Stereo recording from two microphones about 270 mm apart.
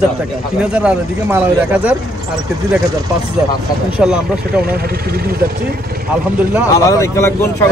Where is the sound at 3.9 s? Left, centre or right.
Centre.